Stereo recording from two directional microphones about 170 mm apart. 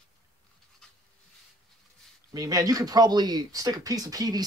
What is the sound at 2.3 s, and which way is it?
Speech, 20° right (ahead or behind).